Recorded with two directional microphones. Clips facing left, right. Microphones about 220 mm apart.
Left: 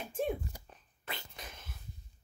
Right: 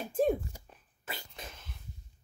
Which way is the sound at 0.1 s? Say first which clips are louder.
Right 7 dB; 40° right (ahead or behind).